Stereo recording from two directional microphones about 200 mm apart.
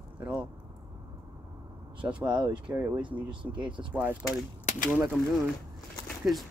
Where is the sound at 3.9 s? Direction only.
5° right (ahead or behind).